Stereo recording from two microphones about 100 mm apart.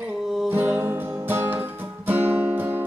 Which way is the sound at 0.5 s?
20° right (ahead or behind).